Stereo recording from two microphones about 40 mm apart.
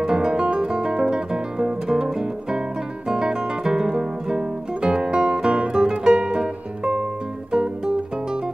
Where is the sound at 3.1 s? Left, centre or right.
Centre.